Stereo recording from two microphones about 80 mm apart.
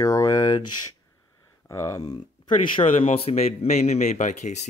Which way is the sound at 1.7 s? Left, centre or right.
Left.